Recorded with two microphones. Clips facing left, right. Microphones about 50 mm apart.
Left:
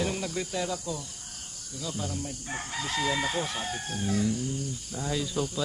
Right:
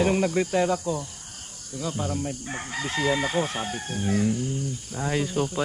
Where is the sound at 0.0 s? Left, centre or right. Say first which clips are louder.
Right 9 dB; right.